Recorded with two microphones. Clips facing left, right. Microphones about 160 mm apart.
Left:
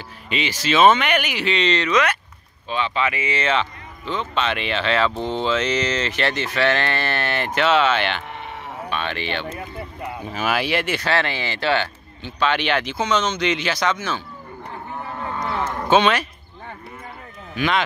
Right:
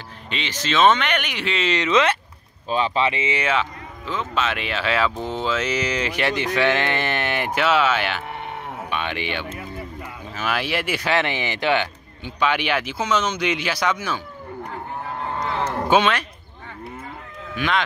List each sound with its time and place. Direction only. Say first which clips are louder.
0.3 s speech: left 4 dB; 10° left (ahead or behind)
1.8 s speech: right 1 dB; 25° right (ahead or behind)
2.7 s speech: right 2 dB; 35° right (ahead or behind)
3.3 s speech: left 1 dB; 5° right (ahead or behind)
10.3 s speech: left 2 dB; 5° left (ahead or behind); by 14.2 s 10° right (ahead or behind)
15.9 s speech: left 2 dB; centre (ahead or behind)
17.6 s speech: left 2 dB; centre (ahead or behind)